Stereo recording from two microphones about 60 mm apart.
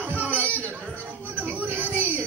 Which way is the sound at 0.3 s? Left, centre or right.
Left.